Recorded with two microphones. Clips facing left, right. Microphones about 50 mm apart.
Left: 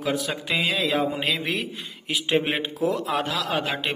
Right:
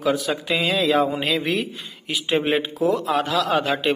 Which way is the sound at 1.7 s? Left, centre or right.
Left.